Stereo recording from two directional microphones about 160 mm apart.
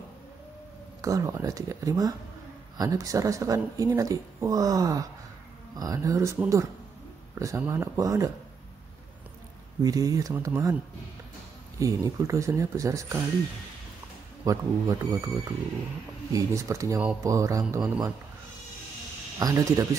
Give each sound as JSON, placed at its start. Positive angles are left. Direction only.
{"t": 1.0, "sound": "speech", "side_deg": -20}
{"t": 9.8, "sound": "speech", "side_deg": -20}
{"t": 11.8, "sound": "speech", "side_deg": -20}
{"t": 14.4, "sound": "speech", "side_deg": -20}
{"t": 16.3, "sound": "speech", "side_deg": -20}
{"t": 19.3, "sound": "speech", "side_deg": -20}